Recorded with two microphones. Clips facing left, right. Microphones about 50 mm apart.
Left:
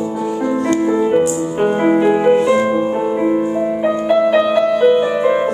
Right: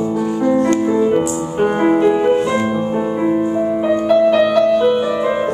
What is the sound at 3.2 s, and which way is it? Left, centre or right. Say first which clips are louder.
Music: right 2 dB; centre.